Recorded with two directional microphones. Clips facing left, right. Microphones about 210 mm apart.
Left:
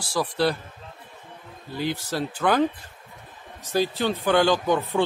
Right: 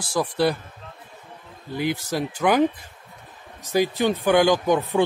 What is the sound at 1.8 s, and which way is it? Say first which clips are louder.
Speech: right 2 dB; 15° right (ahead or behind).